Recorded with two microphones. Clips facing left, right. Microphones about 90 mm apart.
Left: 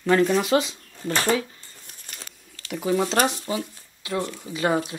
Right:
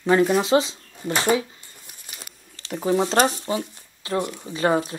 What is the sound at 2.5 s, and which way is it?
Speech, 30° right (ahead or behind).